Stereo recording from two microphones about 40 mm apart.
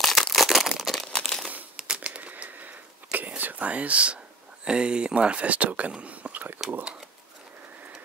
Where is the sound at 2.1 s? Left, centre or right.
Right.